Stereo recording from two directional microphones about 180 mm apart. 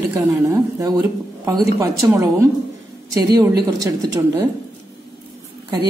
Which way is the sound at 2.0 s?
15° right (ahead or behind).